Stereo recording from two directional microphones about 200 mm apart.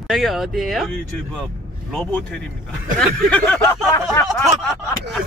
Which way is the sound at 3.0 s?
5° left (ahead or behind).